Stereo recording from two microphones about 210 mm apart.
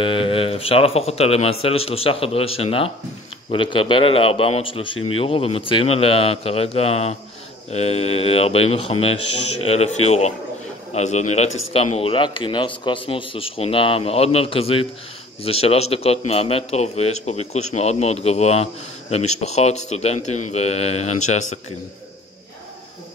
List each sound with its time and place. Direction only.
0.0 s a man's voice: 25° left (ahead or behind)